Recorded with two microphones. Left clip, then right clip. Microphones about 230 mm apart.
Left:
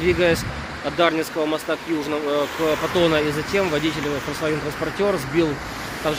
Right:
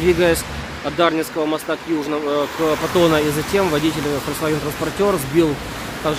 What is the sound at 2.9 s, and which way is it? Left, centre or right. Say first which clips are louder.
Speech: right 5 dB; centre.